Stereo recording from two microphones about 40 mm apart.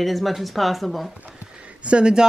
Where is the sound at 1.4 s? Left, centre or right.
Right.